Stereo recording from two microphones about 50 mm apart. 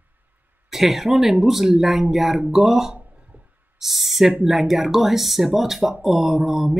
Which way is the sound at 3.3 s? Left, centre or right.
Right.